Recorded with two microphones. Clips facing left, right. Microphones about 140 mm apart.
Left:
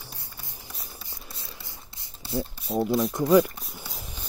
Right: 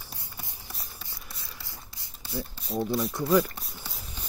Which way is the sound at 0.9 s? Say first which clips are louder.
Left 2 dB; 25° left (ahead or behind).